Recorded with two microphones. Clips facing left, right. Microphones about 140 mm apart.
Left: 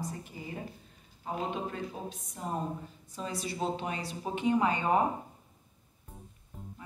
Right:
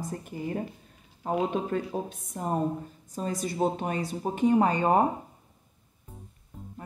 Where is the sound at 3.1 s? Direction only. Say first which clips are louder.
Right 5 dB; 45° right (ahead or behind).